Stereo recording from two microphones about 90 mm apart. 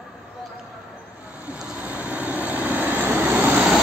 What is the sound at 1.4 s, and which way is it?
Vehicle, 10° right (ahead or behind).